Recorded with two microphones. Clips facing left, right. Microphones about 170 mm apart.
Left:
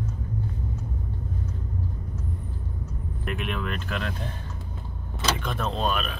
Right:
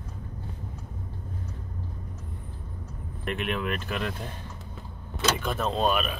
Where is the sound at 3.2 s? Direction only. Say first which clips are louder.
Right 1 dB; centre (ahead or behind).